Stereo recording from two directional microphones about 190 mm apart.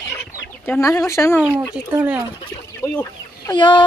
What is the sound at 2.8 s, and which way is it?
Chicken, 10° left (ahead or behind).